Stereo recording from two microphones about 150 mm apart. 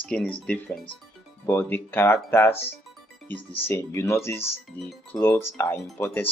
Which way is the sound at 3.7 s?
20° left (ahead or behind).